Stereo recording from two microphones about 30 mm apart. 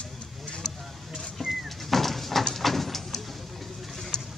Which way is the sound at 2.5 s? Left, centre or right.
Centre.